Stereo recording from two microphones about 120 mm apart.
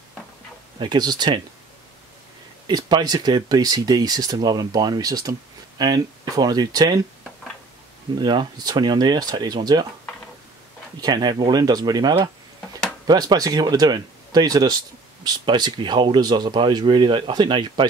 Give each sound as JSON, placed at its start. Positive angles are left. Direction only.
{"t": 0.7, "sound": "speech", "side_deg": -35}
{"t": 2.6, "sound": "speech", "side_deg": -35}
{"t": 8.2, "sound": "speech", "side_deg": -40}
{"t": 11.0, "sound": "speech", "side_deg": -35}